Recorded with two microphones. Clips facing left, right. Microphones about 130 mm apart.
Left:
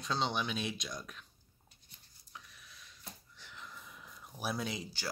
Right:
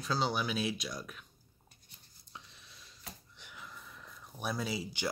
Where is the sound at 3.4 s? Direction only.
5° right (ahead or behind).